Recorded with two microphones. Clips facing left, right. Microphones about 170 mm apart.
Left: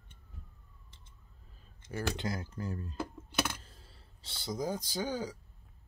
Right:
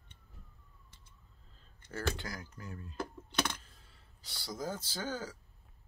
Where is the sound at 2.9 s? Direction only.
5° left (ahead or behind).